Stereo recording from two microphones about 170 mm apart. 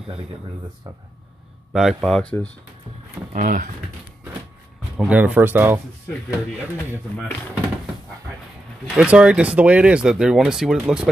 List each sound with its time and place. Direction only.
0.0 s speech: 35° right (ahead or behind)
1.7 s speech: centre (ahead or behind)
3.3 s speech: 50° right (ahead or behind)
4.9 s speech: 5° right (ahead or behind)
8.9 s speech: 5° right (ahead or behind)